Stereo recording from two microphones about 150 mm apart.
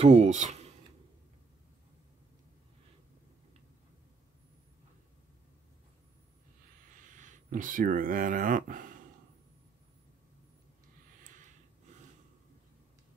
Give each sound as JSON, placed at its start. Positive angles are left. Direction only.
{"t": 0.0, "sound": "speech", "side_deg": -45}
{"t": 7.1, "sound": "speech", "side_deg": -60}